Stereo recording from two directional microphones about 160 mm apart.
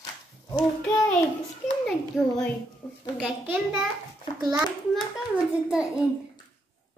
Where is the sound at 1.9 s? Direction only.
5° left (ahead or behind).